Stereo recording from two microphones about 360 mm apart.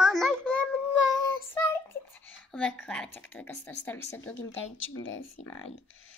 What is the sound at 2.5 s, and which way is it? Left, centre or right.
A woman's voice, centre.